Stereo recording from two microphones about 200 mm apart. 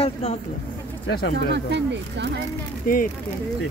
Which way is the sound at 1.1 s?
55° left (ahead or behind).